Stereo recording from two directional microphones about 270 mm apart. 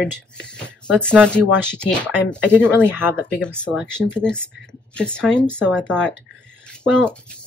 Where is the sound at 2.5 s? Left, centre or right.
Centre.